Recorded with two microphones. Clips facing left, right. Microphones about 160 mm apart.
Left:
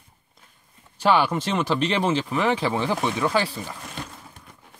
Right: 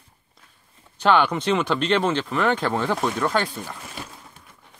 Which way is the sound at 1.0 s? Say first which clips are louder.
Right 1 dB; 5° left (ahead or behind).